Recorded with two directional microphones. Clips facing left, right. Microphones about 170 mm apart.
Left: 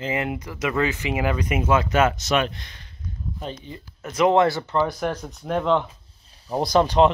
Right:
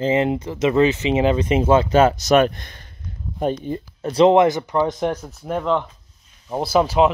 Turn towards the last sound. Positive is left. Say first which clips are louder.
# right 1 dB
turn(degrees=-5)  # may be behind; listen again after turning